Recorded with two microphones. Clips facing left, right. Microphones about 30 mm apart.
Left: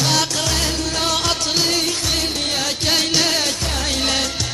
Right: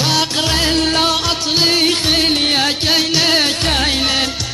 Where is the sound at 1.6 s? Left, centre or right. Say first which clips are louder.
Right 6 dB; right.